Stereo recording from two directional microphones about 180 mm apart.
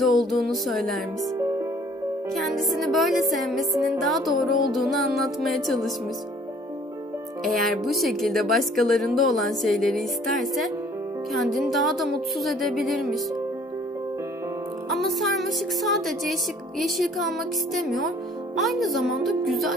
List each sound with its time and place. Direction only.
0.0 s music: centre (ahead or behind)
1.2 s music: 15° right (ahead or behind)
2.3 s music: centre (ahead or behind)
7.7 s music: centre (ahead or behind)
14.9 s music: centre (ahead or behind)